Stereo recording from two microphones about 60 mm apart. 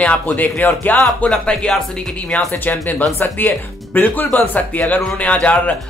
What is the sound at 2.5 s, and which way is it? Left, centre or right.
Speech, left.